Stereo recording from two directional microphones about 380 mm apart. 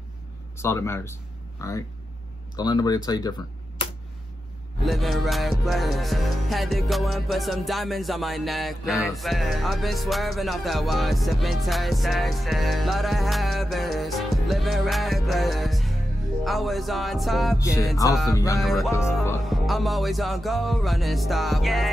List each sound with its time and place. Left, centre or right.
0.6 s speech: centre
4.8 s music: centre